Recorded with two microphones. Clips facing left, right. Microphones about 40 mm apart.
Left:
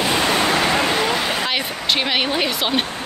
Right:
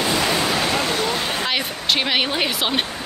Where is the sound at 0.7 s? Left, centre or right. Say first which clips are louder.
Left 3 dB; left.